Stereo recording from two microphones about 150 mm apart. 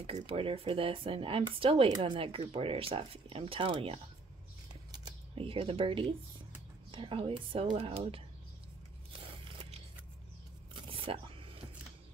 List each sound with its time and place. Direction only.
0.0 s speech: 40° right (ahead or behind)
5.3 s speech: 35° right (ahead or behind)
9.2 s biting: 35° right (ahead or behind)
10.7 s a sound: 35° right (ahead or behind)